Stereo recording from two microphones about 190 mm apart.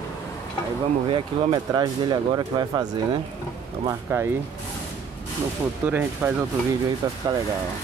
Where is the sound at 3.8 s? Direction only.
10° right (ahead or behind).